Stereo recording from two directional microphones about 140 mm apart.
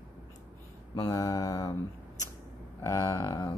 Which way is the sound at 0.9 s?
25° left (ahead or behind).